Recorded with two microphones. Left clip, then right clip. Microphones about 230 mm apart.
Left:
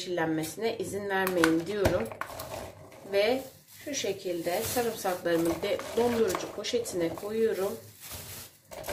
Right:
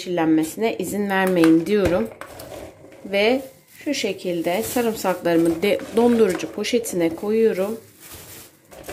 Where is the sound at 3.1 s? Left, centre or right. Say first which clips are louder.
Right 7 dB; right.